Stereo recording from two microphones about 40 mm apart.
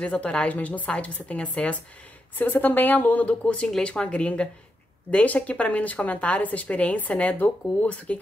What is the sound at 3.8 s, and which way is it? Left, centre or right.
Speech, left.